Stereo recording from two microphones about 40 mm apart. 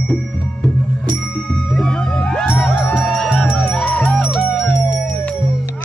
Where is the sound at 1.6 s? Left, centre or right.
Centre.